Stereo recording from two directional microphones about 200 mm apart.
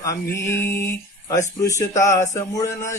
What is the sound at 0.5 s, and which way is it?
Speech, 15° left (ahead or behind).